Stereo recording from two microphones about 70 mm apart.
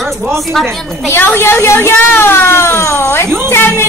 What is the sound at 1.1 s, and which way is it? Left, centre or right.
Speech, left.